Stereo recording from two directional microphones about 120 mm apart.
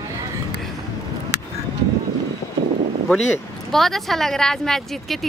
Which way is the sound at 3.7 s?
Centre (ahead or behind).